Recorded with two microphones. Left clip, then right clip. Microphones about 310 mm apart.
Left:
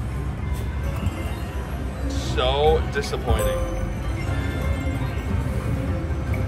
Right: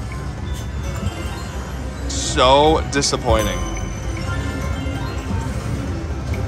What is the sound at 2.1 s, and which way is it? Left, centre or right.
Music, right.